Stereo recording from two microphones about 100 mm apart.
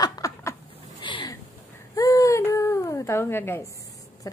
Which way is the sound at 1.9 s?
35° left (ahead or behind).